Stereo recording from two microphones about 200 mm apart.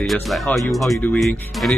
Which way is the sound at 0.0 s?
Centre (ahead or behind).